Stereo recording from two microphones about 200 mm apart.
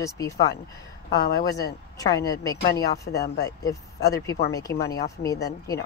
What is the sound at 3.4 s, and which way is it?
Speech, 15° left (ahead or behind).